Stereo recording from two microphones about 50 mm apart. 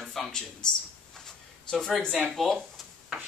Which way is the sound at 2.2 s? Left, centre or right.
Centre.